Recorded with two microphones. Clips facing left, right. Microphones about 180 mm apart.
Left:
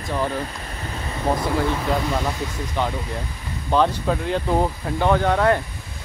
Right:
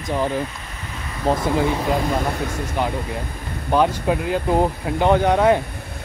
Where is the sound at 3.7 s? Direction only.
10° right (ahead or behind).